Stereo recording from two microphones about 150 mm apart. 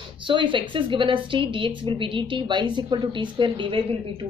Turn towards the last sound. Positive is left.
turn(degrees=-35)  # may be behind; listen again after turning